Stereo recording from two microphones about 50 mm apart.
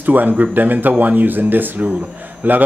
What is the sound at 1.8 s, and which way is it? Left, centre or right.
Speech, centre.